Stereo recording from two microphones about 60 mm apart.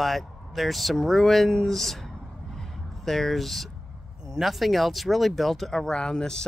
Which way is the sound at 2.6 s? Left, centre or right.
Centre.